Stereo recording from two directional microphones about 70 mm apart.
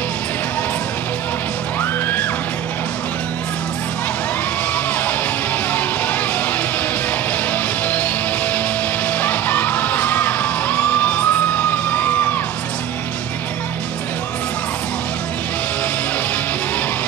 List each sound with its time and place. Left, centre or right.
1.8 s music: left
7.5 s music: left